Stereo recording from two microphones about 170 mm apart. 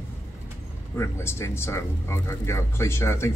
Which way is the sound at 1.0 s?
15° left (ahead or behind).